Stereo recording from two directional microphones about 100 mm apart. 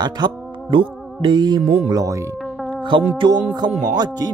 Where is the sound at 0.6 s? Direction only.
55° right (ahead or behind).